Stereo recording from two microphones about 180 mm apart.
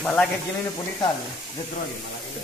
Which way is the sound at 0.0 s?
5° left (ahead or behind).